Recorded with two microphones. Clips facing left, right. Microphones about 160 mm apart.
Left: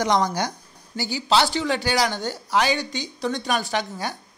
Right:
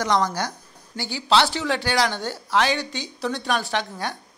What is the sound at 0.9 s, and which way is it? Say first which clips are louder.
Speech: even; centre (ahead or behind).